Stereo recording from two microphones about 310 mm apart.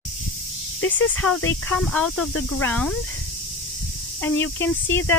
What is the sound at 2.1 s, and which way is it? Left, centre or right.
Speech, left.